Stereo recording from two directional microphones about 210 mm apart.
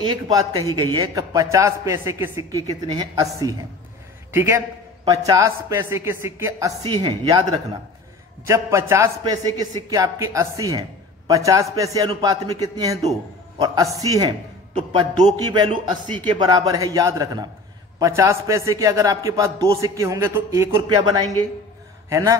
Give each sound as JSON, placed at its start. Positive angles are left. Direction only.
{"t": 0.0, "sound": "a man's voice", "side_deg": -20}
{"t": 8.5, "sound": "a man's voice", "side_deg": -15}